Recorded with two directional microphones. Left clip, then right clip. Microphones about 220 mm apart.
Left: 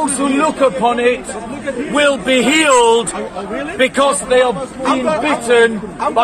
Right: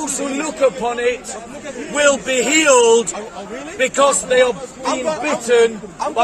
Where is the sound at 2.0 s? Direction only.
20° right (ahead or behind).